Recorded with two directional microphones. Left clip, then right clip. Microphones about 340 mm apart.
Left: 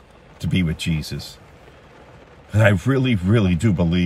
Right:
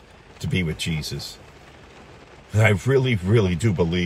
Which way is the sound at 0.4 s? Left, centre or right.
Centre.